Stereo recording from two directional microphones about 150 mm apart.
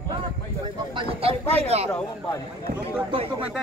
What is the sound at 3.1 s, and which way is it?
Speech, 35° right (ahead or behind).